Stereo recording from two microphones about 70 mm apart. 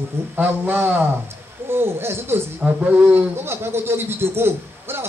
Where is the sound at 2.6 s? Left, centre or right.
Right.